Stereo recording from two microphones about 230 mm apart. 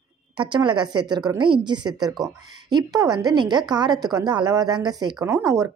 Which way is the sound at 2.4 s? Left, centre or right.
Right.